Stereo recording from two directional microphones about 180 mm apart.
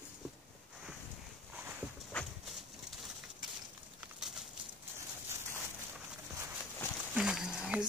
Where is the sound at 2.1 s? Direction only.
5° left (ahead or behind).